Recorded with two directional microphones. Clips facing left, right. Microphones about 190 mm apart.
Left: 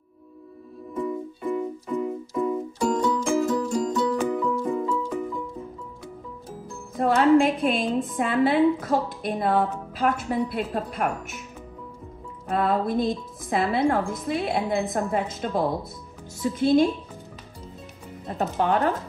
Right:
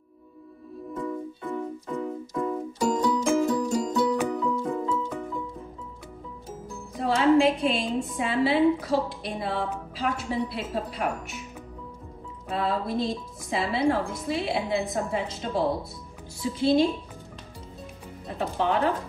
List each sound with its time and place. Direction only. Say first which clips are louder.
1.0 s music: left 4 dB; 10° left (ahead or behind)
2.9 s music: even; centre (ahead or behind)
7.0 s a woman's voice: left 2 dB; 55° left (ahead or behind)
12.4 s a woman's voice: left 4 dB; 50° left (ahead or behind)
18.2 s speech: left 2 dB; 50° left (ahead or behind)